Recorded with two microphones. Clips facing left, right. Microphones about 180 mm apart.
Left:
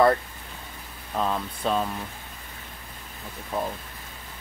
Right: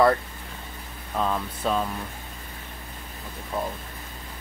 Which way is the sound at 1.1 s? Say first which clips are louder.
Even; 5° left (ahead or behind).